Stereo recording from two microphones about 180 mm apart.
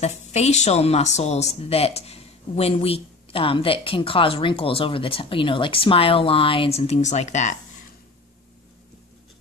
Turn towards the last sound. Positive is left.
turn(degrees=40)  # may be behind; listen again after turning